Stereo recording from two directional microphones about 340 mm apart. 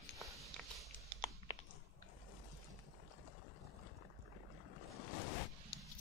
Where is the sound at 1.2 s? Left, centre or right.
Centre.